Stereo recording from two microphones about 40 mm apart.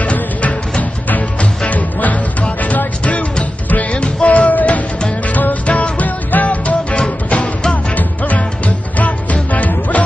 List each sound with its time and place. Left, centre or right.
0.0 s music: left
3.7 s music: left